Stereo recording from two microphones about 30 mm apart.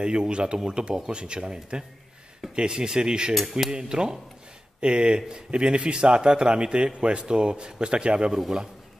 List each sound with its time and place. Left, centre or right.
0.0 s speech: right